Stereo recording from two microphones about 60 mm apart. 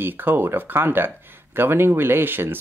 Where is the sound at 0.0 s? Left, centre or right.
Right.